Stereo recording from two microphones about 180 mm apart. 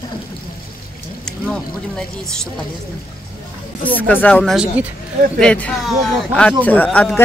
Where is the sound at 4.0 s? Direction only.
10° left (ahead or behind).